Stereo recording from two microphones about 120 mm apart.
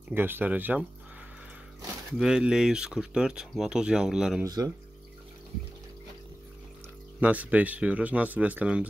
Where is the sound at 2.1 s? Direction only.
5° right (ahead or behind).